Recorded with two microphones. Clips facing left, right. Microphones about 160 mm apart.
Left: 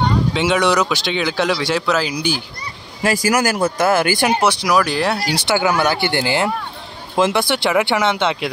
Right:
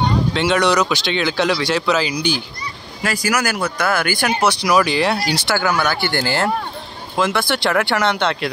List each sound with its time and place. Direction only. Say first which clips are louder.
0.3 s speech: even; 10° left (ahead or behind)
3.0 s speech: left 4 dB; 30° left (ahead or behind)
4.6 s speech: right 1 dB; centre (ahead or behind)
5.3 s speech: left 2 dB; 15° left (ahead or behind)